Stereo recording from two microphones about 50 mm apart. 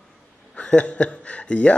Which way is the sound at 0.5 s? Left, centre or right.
Left.